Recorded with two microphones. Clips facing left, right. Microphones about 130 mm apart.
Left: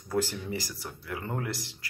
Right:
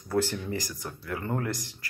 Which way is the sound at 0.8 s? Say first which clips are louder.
Right 3 dB; 20° left (ahead or behind).